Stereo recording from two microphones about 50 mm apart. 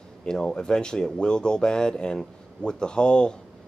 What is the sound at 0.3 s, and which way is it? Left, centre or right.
Speech, centre.